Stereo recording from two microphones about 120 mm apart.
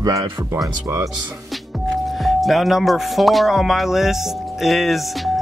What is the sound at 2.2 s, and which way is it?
Music, centre (ahead or behind).